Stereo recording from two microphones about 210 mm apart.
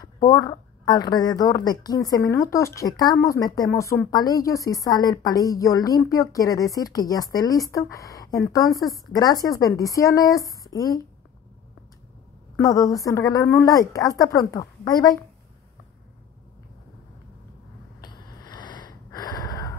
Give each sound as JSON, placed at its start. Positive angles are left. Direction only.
{"t": 0.0, "sound": "a woman's voice", "side_deg": 20}
{"t": 12.5, "sound": "a woman's voice", "side_deg": 15}
{"t": 18.0, "sound": "a sound", "side_deg": 20}